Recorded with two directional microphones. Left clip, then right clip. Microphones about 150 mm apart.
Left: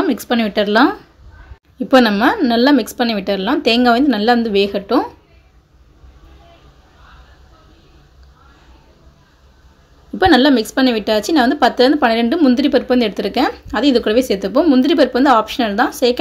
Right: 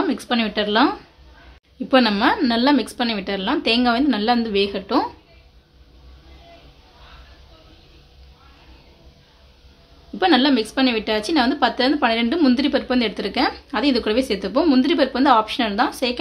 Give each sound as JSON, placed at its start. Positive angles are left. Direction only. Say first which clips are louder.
{"t": 0.0, "sound": "speech", "louder": "left 4 dB", "side_deg": 25}
{"t": 1.9, "sound": "speech", "louder": "left 5 dB", "side_deg": 20}
{"t": 10.1, "sound": "speech", "louder": "left 5 dB", "side_deg": 25}
{"t": 12.4, "sound": "speech", "louder": "left 4 dB", "side_deg": 10}
{"t": 12.6, "sound": "speech", "louder": "left 6 dB", "side_deg": 25}